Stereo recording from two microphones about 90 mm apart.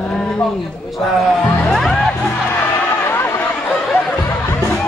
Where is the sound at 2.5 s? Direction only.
25° left (ahead or behind).